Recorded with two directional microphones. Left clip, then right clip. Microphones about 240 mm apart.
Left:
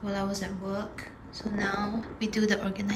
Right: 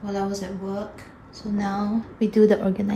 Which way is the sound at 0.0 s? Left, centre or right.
Centre.